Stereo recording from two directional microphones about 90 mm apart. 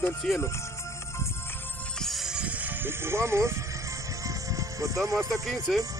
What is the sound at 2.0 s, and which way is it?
Music, centre (ahead or behind).